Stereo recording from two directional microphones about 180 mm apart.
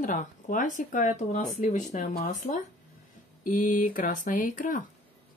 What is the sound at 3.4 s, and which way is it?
Speech, 45° left (ahead or behind).